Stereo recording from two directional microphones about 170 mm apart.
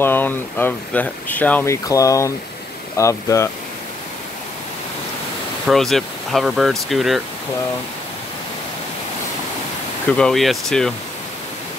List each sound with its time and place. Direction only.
0.0 s speech: 10° left (ahead or behind)
5.7 s speech: centre (ahead or behind)
10.1 s speech: 5° left (ahead or behind)